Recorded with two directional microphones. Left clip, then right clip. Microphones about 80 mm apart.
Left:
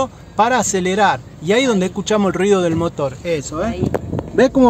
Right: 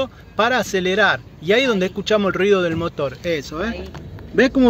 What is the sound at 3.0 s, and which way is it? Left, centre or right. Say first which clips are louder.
Speech: left 2 dB; centre.